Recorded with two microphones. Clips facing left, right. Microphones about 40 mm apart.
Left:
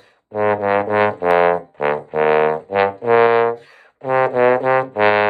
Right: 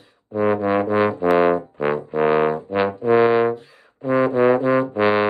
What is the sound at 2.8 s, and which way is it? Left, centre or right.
Music, left.